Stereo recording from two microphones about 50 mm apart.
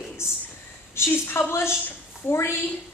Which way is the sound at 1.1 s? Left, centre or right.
Left.